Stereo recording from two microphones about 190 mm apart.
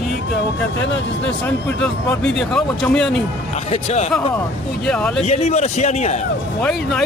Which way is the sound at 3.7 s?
35° left (ahead or behind).